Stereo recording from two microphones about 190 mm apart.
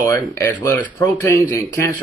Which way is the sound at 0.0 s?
15° left (ahead or behind).